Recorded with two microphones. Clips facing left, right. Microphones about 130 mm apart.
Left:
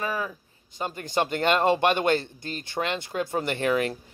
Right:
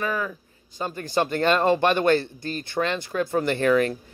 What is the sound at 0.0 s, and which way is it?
Speech, 25° left (ahead or behind).